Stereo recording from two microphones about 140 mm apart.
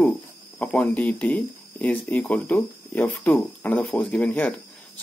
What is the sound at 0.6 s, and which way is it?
Speech, 10° left (ahead or behind).